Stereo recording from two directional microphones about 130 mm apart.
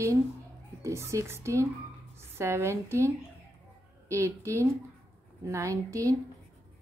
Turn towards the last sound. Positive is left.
turn(degrees=-25)  # may be behind; listen again after turning